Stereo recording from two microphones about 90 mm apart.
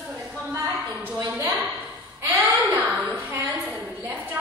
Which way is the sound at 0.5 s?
35° right (ahead or behind).